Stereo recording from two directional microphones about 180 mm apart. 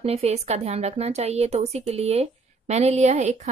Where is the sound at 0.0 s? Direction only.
35° right (ahead or behind).